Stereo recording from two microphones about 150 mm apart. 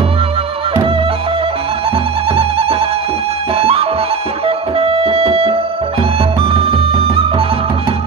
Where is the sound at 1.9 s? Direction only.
40° right (ahead or behind).